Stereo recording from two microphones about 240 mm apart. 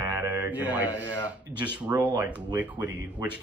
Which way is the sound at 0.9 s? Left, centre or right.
Centre.